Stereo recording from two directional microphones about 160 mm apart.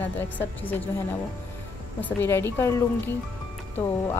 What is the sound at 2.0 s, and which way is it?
Speech, 15° left (ahead or behind).